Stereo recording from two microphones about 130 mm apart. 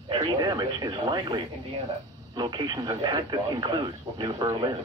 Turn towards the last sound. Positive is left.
turn(degrees=-35)  # may be behind; listen again after turning